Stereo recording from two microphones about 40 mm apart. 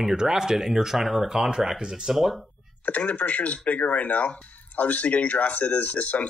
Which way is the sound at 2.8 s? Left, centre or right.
Left.